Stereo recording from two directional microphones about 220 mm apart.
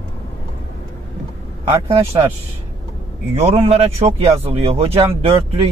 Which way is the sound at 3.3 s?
25° right (ahead or behind).